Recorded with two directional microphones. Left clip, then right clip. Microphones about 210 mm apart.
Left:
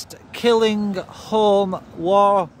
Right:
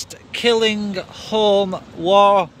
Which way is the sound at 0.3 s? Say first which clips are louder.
Even; 30° left (ahead or behind).